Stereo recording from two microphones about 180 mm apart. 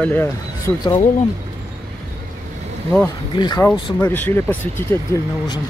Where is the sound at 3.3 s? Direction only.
25° left (ahead or behind).